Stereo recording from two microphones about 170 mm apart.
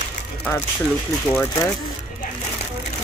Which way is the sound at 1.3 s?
15° left (ahead or behind).